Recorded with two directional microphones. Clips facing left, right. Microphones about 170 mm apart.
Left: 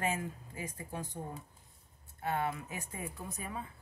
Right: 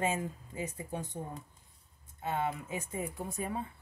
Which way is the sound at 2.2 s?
20° right (ahead or behind).